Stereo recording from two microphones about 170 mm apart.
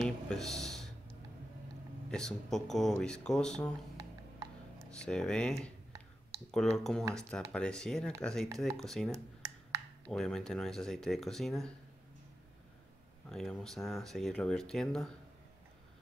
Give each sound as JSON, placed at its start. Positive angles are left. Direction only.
{"t": 0.0, "sound": "a sound", "side_deg": 0}
{"t": 2.0, "sound": "speech", "side_deg": 5}
{"t": 5.0, "sound": "speech", "side_deg": 5}
{"t": 9.1, "sound": "a sound", "side_deg": -15}
{"t": 10.1, "sound": "speech", "side_deg": 5}
{"t": 13.3, "sound": "speech", "side_deg": 0}